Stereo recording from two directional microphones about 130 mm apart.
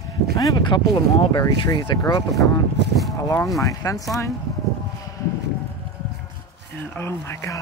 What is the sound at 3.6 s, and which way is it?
Speech, 25° left (ahead or behind).